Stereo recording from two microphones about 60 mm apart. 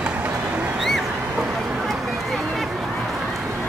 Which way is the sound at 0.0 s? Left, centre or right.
Right.